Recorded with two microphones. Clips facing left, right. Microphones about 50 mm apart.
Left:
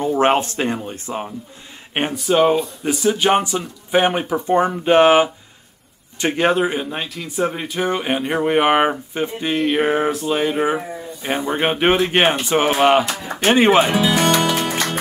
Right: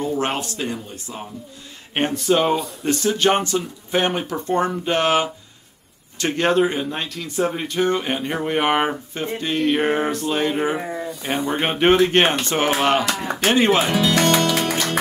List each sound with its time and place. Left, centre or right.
0.0 s speech: left
2.0 s speech: centre
14.5 s music: centre